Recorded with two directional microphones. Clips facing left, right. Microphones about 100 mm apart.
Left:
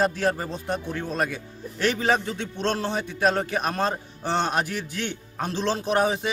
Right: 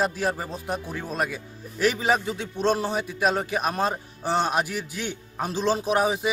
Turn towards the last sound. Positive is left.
turn(degrees=-5)  # may be behind; listen again after turning